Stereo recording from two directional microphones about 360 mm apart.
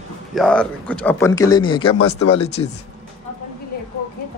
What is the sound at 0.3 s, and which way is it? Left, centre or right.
A man's voice, centre.